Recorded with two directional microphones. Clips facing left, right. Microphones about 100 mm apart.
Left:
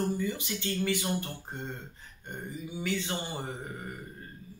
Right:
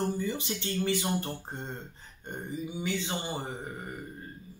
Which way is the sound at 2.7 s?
20° right (ahead or behind).